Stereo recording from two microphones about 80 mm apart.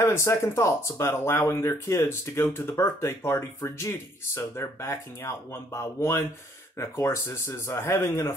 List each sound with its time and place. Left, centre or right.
0.0 s speech: left